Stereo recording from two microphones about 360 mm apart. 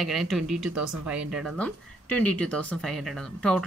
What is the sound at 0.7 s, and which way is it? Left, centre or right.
Speech, right.